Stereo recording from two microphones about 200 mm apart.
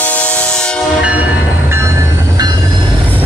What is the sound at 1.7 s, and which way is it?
Train, 15° right (ahead or behind).